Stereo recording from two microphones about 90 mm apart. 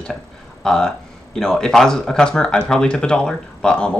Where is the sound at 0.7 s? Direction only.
5° left (ahead or behind).